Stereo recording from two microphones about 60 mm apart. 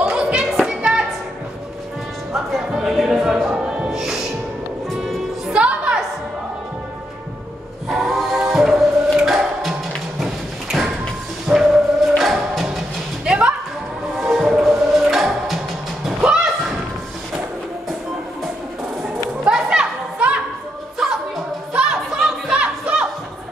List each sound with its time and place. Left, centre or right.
0.0 s music: centre
0.5 s music: centre
2.7 s music: centre
3.9 s music: centre
5.5 s music: centre
7.9 s music: centre
10.2 s tap: centre
11.4 s music: centre
12.2 s music: centre
13.2 s music: centre
14.6 s music: centre
16.2 s thump: centre
19.4 s a sound: centre
21.0 s music: centre